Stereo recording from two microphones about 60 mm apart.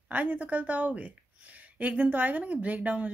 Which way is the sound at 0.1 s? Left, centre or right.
Right.